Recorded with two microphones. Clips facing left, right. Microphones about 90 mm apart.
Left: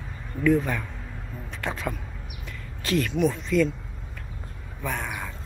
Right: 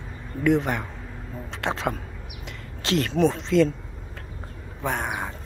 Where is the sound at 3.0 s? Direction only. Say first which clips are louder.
Right 3 dB; 30° right (ahead or behind).